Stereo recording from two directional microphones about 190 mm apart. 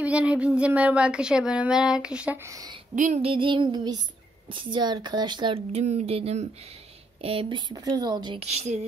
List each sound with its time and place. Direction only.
0.0 s speech: 5° right (ahead or behind)
3.0 s speech: 35° right (ahead or behind)